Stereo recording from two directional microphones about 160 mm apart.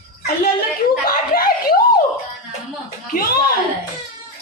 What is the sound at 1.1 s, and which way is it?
Chuckle, 70° left (ahead or behind).